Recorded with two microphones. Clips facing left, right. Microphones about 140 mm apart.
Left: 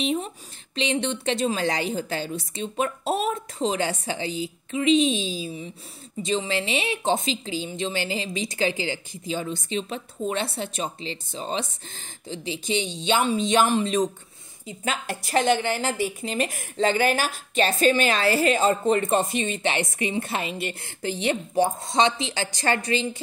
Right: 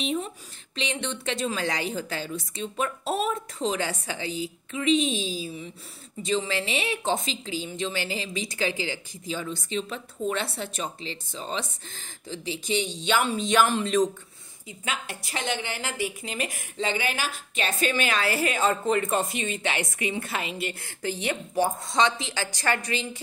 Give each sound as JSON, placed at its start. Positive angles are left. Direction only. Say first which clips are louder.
{"t": 0.0, "sound": "a woman's voice", "louder": "left 3 dB", "side_deg": 30}
{"t": 14.9, "sound": "a woman's voice", "louder": "left 5 dB", "side_deg": 40}